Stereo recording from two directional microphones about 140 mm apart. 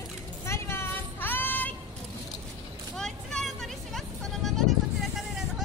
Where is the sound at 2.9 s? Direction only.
5° left (ahead or behind).